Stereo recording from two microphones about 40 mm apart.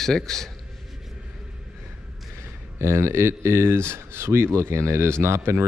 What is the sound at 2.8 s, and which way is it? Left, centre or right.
Speech, right.